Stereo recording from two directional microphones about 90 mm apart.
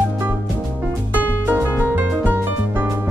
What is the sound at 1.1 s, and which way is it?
Music, 20° right (ahead or behind).